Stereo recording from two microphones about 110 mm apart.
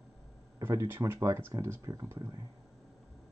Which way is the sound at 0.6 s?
20° right (ahead or behind).